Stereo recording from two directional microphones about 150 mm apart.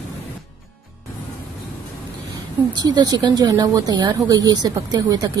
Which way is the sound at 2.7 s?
25° right (ahead or behind).